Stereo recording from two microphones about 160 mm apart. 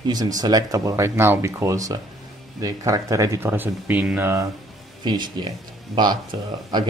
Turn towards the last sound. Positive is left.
turn(degrees=-30)  # may be behind; listen again after turning